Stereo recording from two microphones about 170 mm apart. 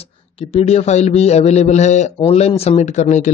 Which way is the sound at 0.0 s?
35° left (ahead or behind).